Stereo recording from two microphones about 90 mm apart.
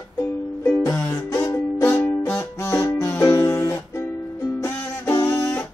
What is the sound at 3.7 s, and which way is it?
Music, 30° left (ahead or behind).